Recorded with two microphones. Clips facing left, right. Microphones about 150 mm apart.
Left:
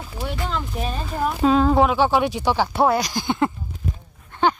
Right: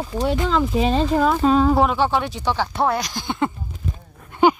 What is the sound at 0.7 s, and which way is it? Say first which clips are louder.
Speech: right 8 dB; 90° right.